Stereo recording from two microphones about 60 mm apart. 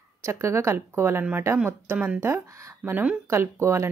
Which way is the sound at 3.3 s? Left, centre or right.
Right.